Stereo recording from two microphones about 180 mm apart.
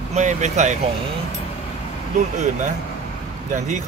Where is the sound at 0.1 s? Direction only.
40° right (ahead or behind).